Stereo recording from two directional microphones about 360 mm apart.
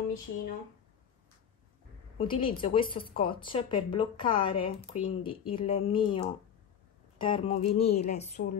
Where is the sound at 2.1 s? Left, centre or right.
Centre.